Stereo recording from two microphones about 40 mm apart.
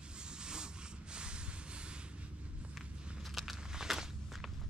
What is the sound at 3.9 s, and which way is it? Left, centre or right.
Walk, centre.